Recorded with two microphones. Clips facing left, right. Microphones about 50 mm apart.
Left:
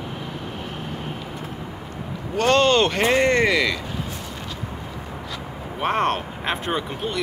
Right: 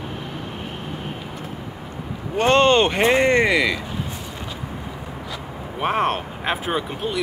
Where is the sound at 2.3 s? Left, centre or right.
Right.